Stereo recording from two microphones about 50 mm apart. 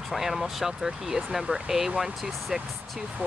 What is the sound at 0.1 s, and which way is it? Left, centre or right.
Speech, centre.